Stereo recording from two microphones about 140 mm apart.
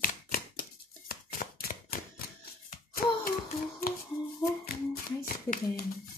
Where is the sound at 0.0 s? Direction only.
90° left.